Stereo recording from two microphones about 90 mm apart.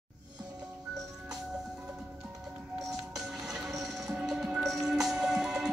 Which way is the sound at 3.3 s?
5° right (ahead or behind).